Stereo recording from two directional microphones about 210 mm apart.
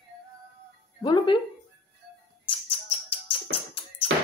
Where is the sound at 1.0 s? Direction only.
25° left (ahead or behind).